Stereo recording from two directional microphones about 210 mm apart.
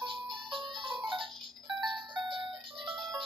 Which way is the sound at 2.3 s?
25° right (ahead or behind).